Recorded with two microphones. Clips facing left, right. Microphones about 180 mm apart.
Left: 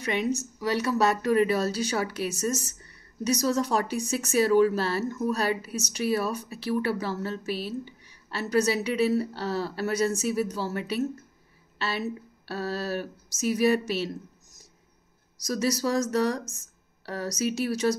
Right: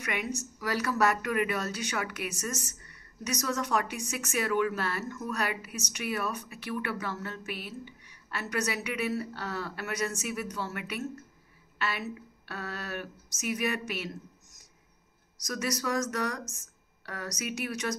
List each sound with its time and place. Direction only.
0.0 s speech: 25° left (ahead or behind)
15.4 s speech: 30° left (ahead or behind)